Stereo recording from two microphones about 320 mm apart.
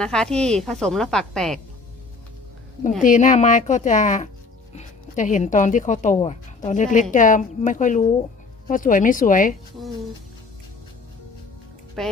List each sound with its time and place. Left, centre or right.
0.0 s a woman's voice: centre
3.0 s speech: left
12.0 s a woman's voice: centre